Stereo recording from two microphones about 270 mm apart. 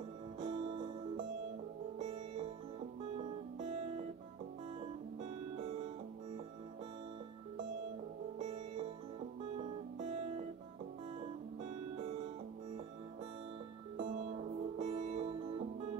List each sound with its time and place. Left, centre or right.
0.5 s music: centre
2.0 s music: right
4.7 s music: right
13.9 s music: right